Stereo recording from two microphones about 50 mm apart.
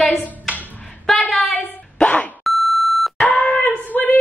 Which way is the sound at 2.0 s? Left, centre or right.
Left.